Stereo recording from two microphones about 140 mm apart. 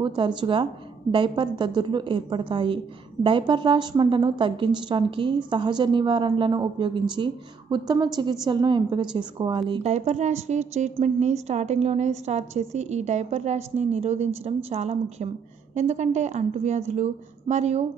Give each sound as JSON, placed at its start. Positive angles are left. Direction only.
{"t": 0.0, "sound": "a woman's voice", "side_deg": -35}
{"t": 9.8, "sound": "a woman's voice", "side_deg": -50}